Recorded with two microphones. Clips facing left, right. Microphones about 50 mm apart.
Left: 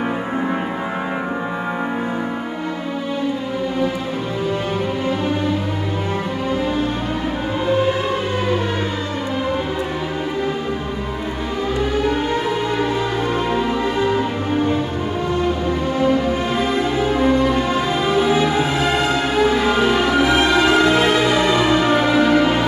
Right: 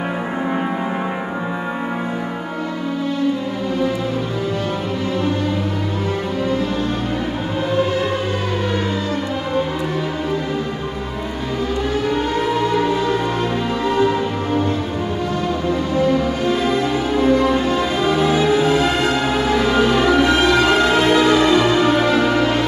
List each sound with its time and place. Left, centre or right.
16.0 s music: centre